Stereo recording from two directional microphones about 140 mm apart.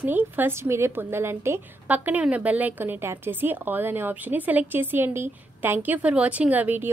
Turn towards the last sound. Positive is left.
turn(degrees=-10)  # may be behind; listen again after turning